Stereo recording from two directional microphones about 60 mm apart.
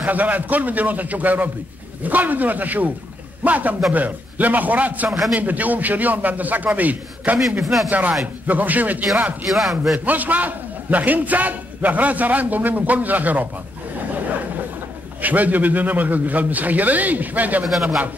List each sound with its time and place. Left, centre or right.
0.0 s a man's voice: right
7.6 s a man's voice: centre
8.5 s a man's voice: right
9.5 s a man's voice: centre
9.9 s a man's voice: right
15.2 s a man's voice: right